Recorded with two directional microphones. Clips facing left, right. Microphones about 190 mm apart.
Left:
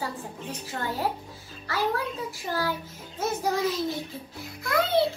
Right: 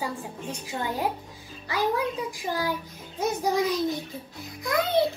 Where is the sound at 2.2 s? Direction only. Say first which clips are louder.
Right 1 dB; 15° right (ahead or behind).